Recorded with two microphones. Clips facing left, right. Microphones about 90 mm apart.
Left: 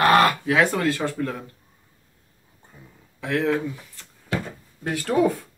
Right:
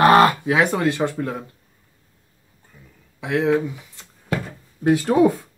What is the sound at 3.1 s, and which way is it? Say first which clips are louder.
Speech: right 4 dB; 15° right (ahead or behind).